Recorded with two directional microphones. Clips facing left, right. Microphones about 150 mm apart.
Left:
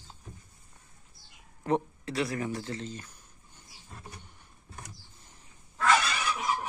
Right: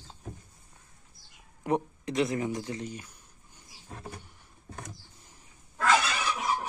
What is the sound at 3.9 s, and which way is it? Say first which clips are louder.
Vehicle: right 5 dB; 80° right.